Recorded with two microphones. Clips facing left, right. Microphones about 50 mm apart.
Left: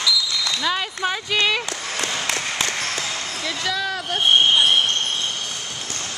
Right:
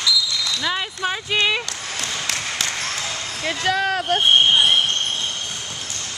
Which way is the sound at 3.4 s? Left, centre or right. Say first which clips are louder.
Right 5 dB; right.